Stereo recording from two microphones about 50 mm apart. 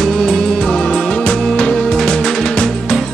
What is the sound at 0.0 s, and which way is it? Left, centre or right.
Music, centre.